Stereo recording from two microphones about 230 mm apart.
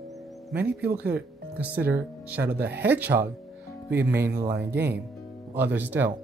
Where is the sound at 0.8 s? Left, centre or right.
Right.